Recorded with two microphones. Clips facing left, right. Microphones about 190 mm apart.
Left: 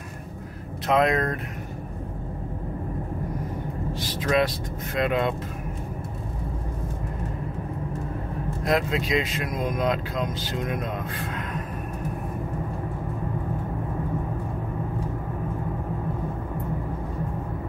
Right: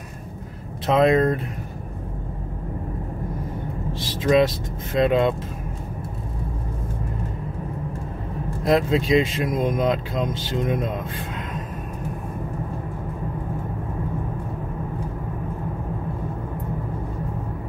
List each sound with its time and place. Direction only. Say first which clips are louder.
0.8 s speech: right 5 dB; 25° right (ahead or behind)
4.0 s speech: right 5 dB; 25° right (ahead or behind)
8.6 s speech: right 5 dB; 30° right (ahead or behind)